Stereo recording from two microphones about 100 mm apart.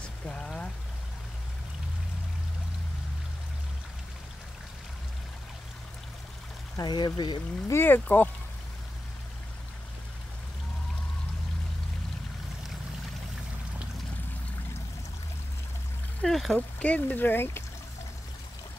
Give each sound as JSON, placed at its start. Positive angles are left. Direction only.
{"t": 0.3, "sound": "pour", "side_deg": 5}
{"t": 6.8, "sound": "speech", "side_deg": 45}
{"t": 7.6, "sound": "speech", "side_deg": 25}
{"t": 16.2, "sound": "a sound", "side_deg": 0}
{"t": 16.5, "sound": "speech", "side_deg": 15}